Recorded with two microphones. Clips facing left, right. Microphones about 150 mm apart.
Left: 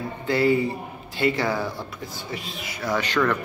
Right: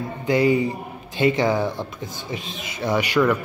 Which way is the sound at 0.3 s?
15° right (ahead or behind).